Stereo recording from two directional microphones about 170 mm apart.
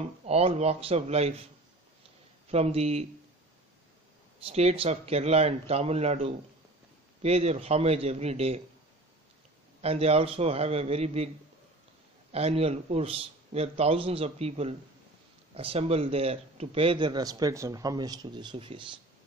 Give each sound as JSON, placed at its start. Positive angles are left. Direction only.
{"t": 0.0, "sound": "a man's voice", "side_deg": -40}
{"t": 2.5, "sound": "a man's voice", "side_deg": -40}
{"t": 4.4, "sound": "a man's voice", "side_deg": -35}
{"t": 9.8, "sound": "a man's voice", "side_deg": -35}
{"t": 12.3, "sound": "a man's voice", "side_deg": -35}